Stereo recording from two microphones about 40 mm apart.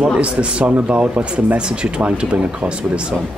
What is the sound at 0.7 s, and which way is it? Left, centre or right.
Speech, right.